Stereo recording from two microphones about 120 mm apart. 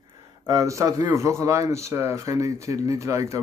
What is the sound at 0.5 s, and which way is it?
Speech, 25° right (ahead or behind).